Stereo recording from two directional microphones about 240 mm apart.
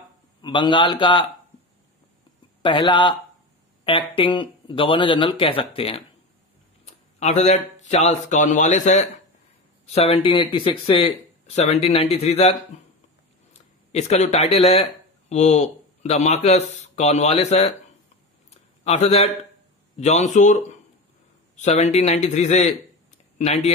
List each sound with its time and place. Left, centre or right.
0.4 s speech: centre
2.6 s speech: left
18.5 s a sound: left
20.0 s a man's voice: left